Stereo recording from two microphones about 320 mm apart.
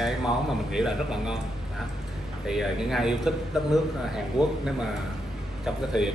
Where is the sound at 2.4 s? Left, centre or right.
Centre.